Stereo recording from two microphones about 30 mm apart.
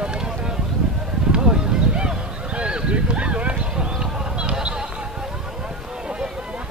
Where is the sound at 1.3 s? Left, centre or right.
Right.